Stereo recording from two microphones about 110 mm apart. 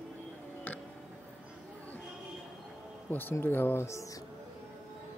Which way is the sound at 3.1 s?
20° left (ahead or behind).